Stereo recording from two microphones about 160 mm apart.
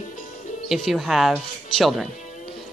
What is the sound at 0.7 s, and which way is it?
Speech, centre (ahead or behind).